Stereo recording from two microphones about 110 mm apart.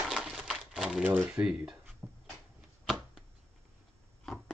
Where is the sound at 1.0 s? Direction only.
15° right (ahead or behind).